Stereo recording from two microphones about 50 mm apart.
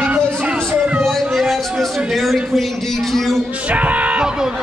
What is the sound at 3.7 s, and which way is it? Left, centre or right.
Music, right.